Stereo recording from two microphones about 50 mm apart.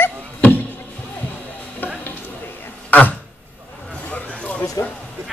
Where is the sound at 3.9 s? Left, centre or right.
Left.